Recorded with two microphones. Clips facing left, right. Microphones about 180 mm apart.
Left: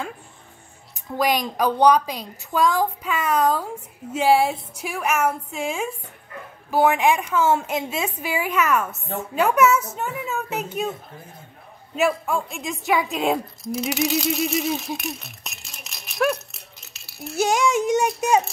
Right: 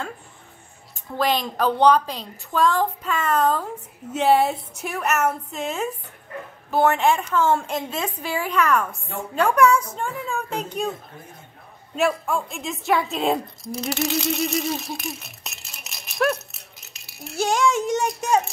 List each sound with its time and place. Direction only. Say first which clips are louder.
1.1 s a woman's voice: left 1 dB; 10° left (ahead or behind)
11.9 s speech: left 1 dB; 5° left (ahead or behind)
17.4 s a woman's voice: left 1 dB; 15° left (ahead or behind)